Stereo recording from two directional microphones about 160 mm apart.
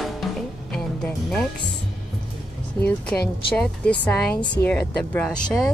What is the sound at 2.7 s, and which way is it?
Speech, 10° left (ahead or behind).